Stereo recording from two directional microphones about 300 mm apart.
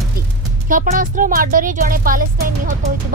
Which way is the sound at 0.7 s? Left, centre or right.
Right.